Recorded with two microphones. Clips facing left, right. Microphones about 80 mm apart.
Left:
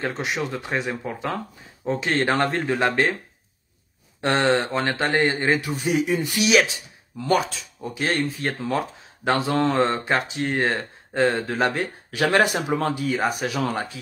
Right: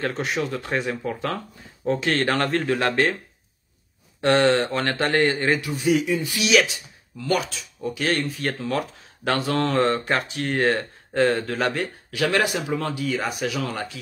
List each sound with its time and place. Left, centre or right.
0.0 s speech: centre
4.2 s speech: left
5.6 s a man's voice: left
6.5 s speech: left
12.4 s speech: left